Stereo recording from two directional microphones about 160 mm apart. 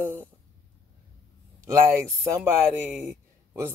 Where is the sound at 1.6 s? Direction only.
20° right (ahead or behind).